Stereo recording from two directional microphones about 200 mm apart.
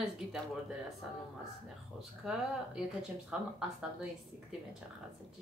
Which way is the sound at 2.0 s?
5° right (ahead or behind).